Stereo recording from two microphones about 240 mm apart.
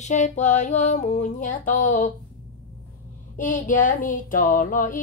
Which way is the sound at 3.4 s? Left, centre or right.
Left.